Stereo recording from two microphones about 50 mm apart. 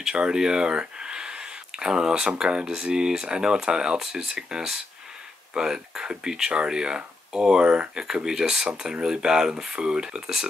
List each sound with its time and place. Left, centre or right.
0.1 s speech: centre